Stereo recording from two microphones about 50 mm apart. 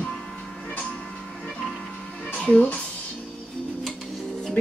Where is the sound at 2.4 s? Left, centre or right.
Left.